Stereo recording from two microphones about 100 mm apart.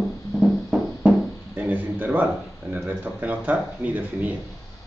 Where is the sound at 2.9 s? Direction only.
15° right (ahead or behind).